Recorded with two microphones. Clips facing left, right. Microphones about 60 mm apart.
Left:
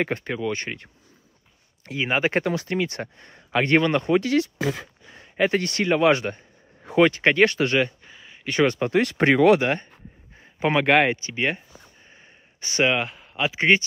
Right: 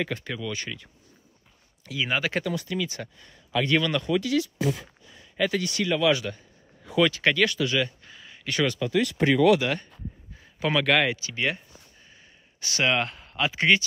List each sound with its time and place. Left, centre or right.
0.0 s speech: left
1.9 s speech: left
2.3 s speech: left
3.8 s speech: left
4.6 s speech: left
5.1 s a man's voice: left
8.0 s a sound: left
8.6 s speech: left
9.7 s speech: left
12.1 s a sound: left
12.9 s speech: centre
13.6 s speech: left